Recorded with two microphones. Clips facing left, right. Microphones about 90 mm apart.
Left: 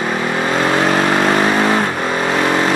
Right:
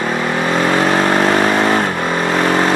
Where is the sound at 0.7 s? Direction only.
35° right (ahead or behind).